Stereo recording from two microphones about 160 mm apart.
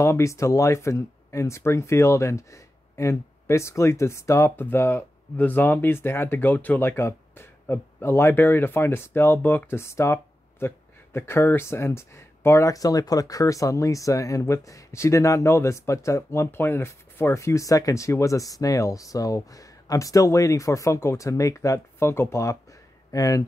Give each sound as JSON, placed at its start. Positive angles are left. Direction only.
{"t": 0.0, "sound": "speech", "side_deg": 20}